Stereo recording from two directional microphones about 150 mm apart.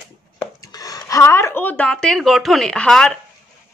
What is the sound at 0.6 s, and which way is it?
A woman's voice, 25° left (ahead or behind).